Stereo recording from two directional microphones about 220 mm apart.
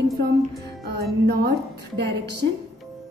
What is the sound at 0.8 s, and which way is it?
A woman's voice, 50° right (ahead or behind).